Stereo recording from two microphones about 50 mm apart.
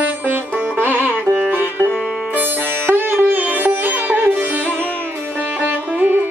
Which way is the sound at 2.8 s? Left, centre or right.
Right.